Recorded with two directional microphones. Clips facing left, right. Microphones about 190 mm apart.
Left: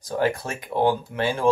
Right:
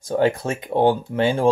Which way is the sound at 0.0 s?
25° right (ahead or behind).